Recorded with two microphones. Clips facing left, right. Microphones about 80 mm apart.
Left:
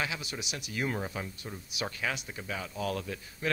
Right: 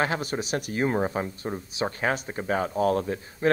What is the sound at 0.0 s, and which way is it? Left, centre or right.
Speech, right.